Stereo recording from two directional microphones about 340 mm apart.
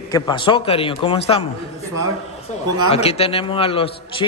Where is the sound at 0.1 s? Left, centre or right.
Centre.